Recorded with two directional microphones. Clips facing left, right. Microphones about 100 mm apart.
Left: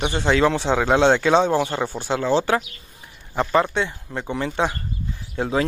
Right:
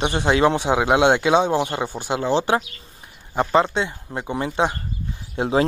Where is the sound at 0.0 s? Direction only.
15° right (ahead or behind).